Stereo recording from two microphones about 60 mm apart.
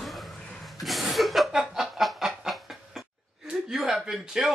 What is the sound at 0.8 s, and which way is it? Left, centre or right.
Snicker, centre.